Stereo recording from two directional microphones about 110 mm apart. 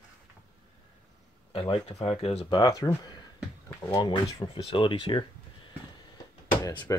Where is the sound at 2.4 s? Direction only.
40° left (ahead or behind).